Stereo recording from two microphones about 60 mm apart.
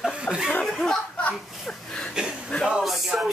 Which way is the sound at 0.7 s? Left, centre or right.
Centre.